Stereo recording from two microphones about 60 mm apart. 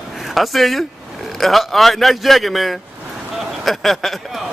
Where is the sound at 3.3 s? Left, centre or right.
Centre.